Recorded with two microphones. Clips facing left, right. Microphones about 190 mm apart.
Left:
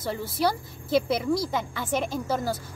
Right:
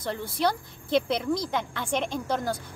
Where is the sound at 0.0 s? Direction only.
5° left (ahead or behind).